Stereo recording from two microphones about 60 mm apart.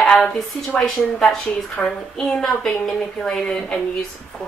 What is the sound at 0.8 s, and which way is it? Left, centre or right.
A woman's voice, centre.